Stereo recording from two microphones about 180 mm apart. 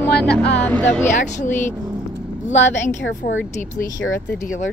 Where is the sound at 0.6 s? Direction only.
10° left (ahead or behind).